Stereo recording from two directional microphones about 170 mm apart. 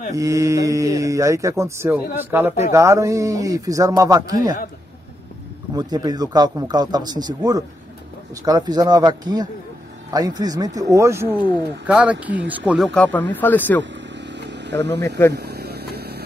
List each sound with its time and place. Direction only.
0.1 s speech: 20° right (ahead or behind)
5.8 s speech: 25° right (ahead or behind); by 13.8 s 10° left (ahead or behind)
14.2 s vehicle: 90° right
14.9 s speech: 15° left (ahead or behind)
15.3 s vehicle: 70° right (ahead or behind)